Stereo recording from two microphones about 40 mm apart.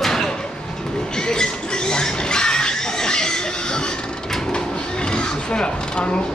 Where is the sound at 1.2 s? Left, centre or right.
Centre.